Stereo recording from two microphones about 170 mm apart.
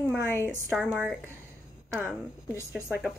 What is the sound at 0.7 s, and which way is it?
Speech, 5° right (ahead or behind).